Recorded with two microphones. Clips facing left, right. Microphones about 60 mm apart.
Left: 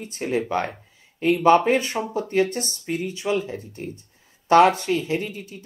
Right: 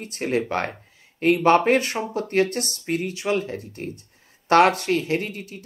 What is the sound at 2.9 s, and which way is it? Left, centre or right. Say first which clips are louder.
Speech: right 2 dB; right.